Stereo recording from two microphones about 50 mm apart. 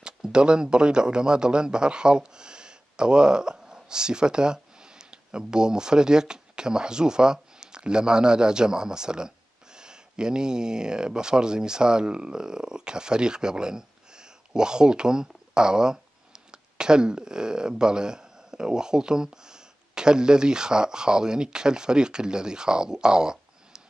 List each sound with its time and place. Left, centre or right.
0.0 s a man's voice: centre